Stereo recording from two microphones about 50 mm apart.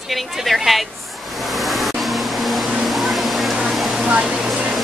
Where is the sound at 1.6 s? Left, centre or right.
Centre.